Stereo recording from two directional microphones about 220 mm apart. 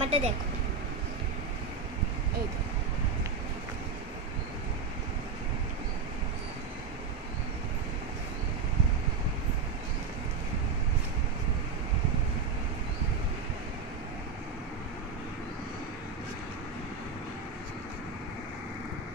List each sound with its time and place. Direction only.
0.0 s vehicle: 30° right (ahead or behind)